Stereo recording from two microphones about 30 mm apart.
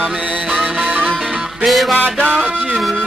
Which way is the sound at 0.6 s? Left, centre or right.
Right.